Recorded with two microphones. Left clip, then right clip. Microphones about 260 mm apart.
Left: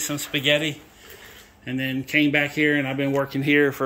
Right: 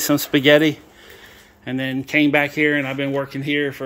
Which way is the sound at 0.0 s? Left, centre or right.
Right.